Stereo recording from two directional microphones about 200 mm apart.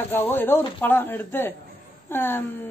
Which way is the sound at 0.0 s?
10° left (ahead or behind).